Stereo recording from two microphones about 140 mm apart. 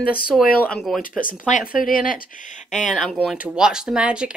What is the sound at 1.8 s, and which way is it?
Speech, 80° left.